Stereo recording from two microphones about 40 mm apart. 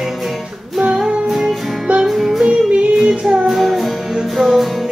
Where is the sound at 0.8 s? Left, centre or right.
Centre.